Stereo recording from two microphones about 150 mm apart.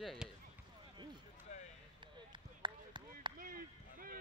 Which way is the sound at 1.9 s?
30° right (ahead or behind).